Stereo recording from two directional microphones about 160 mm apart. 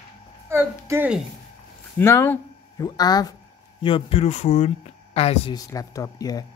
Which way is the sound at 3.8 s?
35° left (ahead or behind).